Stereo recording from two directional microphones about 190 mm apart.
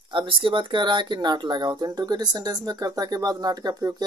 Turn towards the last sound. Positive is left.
turn(degrees=-20)  # may be behind; listen again after turning